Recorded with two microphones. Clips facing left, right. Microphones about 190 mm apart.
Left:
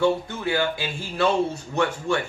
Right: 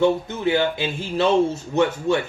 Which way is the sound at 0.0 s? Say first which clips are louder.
Right 3 dB; 20° right (ahead or behind).